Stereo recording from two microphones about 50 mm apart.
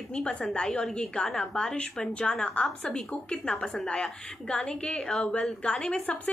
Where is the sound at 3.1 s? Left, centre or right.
Left.